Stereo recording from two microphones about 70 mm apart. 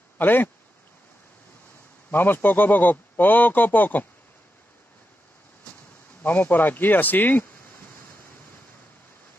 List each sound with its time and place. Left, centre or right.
0.2 s a man's voice: left
2.0 s a man's voice: left
6.2 s a man's voice: left